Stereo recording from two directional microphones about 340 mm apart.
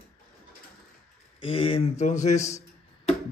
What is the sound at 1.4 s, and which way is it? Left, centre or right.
Speech, centre.